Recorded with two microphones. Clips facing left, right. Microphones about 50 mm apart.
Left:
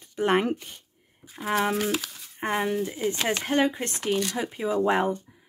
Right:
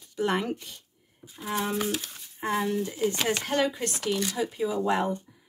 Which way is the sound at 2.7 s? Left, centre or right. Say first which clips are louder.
Even; centre.